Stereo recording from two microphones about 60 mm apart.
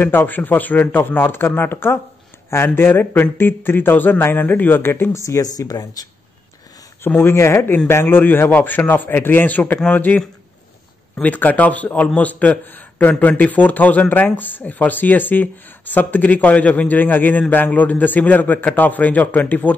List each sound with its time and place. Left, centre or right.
0.3 s a man's voice: left
5.2 s speech: left
7.2 s a man's voice: left
11.2 s speech: left